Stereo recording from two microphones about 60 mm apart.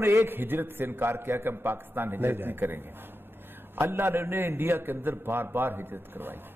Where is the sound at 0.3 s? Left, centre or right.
Right.